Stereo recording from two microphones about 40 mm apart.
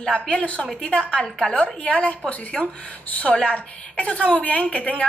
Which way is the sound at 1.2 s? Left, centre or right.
Centre.